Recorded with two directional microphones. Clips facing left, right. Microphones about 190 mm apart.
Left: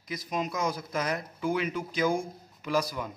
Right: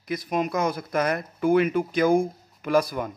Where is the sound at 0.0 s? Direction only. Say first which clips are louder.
Right 6 dB; 60° right (ahead or behind).